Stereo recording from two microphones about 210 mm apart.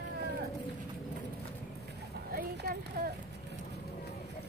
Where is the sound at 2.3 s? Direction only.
45° right (ahead or behind).